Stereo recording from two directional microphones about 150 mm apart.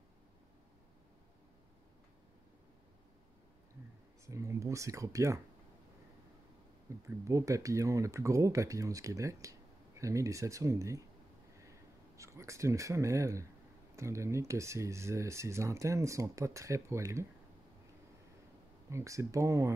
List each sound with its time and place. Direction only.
4.3 s speech: 20° right (ahead or behind)
6.9 s speech: 20° right (ahead or behind)
12.2 s speech: 20° right (ahead or behind)
18.9 s speech: 20° right (ahead or behind)